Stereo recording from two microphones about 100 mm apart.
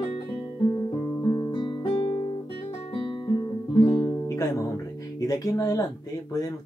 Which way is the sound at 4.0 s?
35° left (ahead or behind).